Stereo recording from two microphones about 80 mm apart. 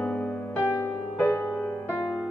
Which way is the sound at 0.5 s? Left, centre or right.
Left.